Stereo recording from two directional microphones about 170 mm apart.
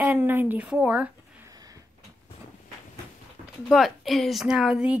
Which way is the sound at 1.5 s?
20° right (ahead or behind).